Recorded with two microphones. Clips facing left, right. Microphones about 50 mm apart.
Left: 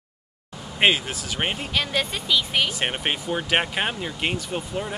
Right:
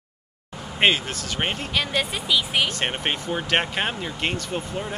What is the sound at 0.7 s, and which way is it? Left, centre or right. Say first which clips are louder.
Speech: even; centre.